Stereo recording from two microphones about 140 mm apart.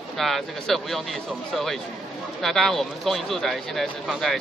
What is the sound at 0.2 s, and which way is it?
Speech, centre (ahead or behind).